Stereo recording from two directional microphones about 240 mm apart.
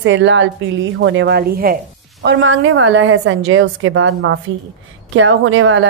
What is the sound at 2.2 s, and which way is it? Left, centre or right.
A woman's voice, right.